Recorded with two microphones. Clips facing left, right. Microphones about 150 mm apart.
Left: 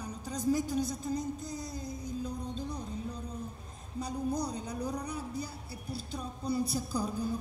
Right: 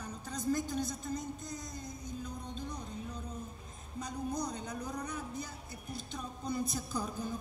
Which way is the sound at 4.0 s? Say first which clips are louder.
Left 4 dB; 35° left (ahead or behind).